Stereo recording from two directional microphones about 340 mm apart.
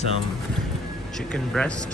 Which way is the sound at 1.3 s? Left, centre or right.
Centre.